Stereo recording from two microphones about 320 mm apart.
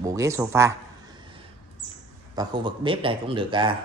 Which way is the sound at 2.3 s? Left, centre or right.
Centre.